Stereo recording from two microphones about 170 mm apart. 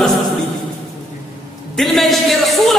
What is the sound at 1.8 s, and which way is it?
Speech, centre (ahead or behind).